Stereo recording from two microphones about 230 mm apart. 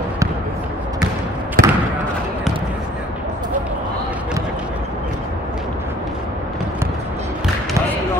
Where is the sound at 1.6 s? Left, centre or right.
Right.